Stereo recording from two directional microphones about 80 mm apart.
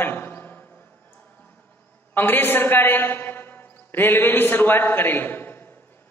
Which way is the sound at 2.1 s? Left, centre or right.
Left.